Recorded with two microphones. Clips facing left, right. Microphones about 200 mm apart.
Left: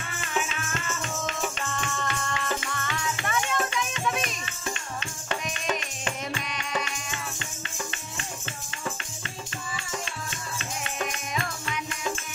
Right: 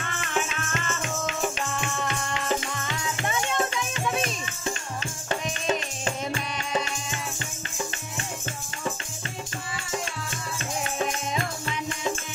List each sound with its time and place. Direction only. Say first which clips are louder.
2.0 s music: right 3 dB; 20° right (ahead or behind)
11.0 s music: right 3 dB; 25° right (ahead or behind)